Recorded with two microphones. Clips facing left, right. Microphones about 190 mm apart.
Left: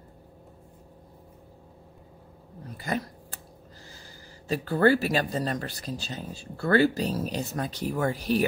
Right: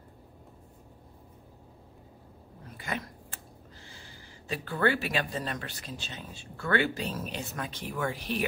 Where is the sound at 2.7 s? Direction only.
40° left (ahead or behind).